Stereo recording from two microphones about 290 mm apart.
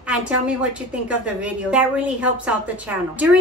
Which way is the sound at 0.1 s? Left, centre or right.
Centre.